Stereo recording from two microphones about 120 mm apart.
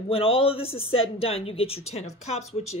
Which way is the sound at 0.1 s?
50° left (ahead or behind).